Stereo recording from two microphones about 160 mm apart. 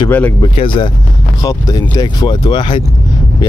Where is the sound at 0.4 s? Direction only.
30° left (ahead or behind).